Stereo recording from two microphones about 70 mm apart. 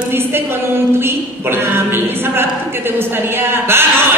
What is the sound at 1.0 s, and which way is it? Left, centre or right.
A man's voice, right.